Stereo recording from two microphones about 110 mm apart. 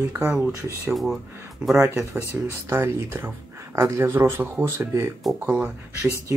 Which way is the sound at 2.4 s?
20° right (ahead or behind).